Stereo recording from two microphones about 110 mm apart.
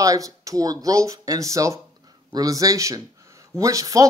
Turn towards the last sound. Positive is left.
turn(degrees=-30)  # may be behind; listen again after turning